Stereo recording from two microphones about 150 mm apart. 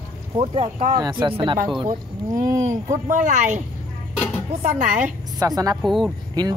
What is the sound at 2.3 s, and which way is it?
Speech, 20° right (ahead or behind).